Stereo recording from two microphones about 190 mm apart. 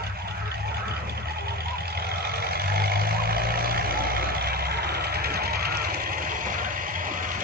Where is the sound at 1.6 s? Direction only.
55° right (ahead or behind).